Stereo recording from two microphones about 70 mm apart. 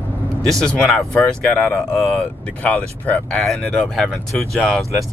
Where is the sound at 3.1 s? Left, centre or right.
Left.